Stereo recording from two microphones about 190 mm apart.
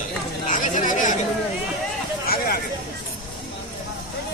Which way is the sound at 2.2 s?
50° left (ahead or behind).